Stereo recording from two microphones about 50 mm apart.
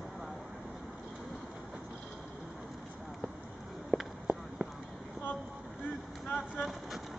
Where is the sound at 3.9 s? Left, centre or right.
Right.